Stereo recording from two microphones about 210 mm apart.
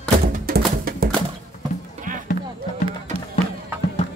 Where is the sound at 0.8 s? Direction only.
45° right (ahead or behind).